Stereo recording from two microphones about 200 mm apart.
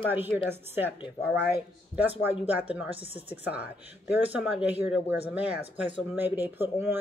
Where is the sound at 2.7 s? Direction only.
5° right (ahead or behind).